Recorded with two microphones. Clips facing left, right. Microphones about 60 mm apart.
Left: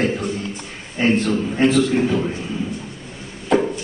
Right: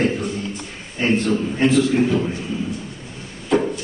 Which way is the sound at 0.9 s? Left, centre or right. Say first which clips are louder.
Left 1 dB; centre.